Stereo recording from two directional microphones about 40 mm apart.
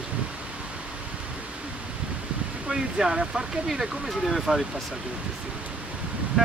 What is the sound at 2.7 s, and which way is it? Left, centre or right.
Speech, centre.